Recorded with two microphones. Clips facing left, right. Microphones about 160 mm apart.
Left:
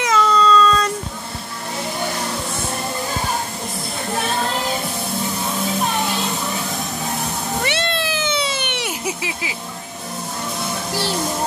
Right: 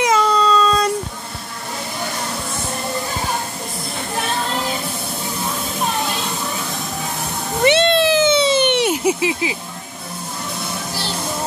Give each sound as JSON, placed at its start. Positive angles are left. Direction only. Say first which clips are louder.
{"t": 0.0, "sound": "child singing", "louder": "right 1 dB", "side_deg": -15}
{"t": 7.6, "sound": "cat", "louder": "right 12 dB", "side_deg": -20}